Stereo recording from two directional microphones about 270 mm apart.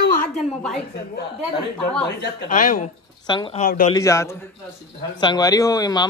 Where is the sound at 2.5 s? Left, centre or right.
Left.